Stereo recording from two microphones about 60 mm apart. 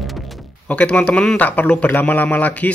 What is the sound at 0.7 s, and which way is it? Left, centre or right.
Speech, centre.